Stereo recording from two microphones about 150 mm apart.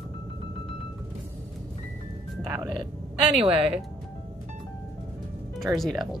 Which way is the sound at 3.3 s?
40° right (ahead or behind).